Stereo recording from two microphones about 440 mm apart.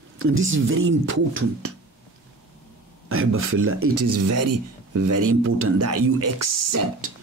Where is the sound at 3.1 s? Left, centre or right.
Right.